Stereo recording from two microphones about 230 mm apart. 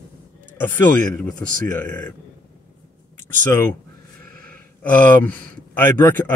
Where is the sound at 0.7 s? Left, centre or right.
Centre.